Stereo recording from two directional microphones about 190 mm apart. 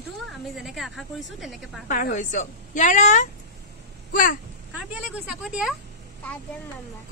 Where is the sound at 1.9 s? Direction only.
40° left (ahead or behind).